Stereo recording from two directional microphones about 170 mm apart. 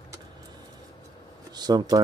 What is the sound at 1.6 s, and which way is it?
Speech, 25° right (ahead or behind).